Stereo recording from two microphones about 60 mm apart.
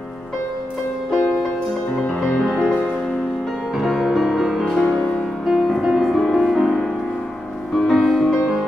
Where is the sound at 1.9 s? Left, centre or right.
Centre.